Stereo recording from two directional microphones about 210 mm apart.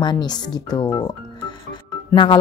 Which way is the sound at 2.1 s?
20° left (ahead or behind).